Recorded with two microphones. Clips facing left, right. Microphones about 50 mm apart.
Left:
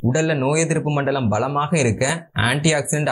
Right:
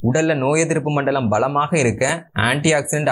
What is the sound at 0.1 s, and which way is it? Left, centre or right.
Speech, right.